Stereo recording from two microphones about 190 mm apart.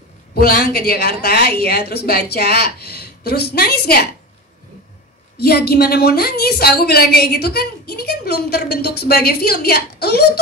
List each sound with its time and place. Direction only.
0.3 s a woman's voice: 50° left (ahead or behind)
5.4 s a woman's voice: 55° left (ahead or behind)